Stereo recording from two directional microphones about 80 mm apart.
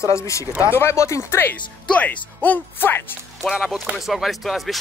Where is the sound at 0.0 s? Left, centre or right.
Left.